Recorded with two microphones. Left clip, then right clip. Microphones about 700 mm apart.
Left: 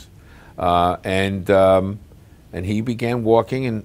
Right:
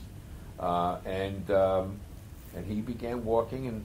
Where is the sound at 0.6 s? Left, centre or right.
Left.